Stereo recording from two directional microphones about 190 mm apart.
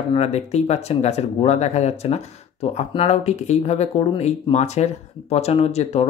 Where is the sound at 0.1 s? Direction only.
35° left (ahead or behind).